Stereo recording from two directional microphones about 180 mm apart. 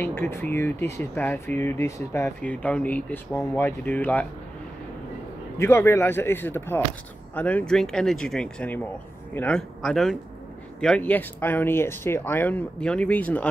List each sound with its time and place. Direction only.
0.0 s speech: 10° left (ahead or behind)
5.6 s speech: 15° left (ahead or behind)